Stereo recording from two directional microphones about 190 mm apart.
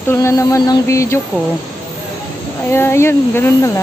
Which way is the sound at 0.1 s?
15° left (ahead or behind).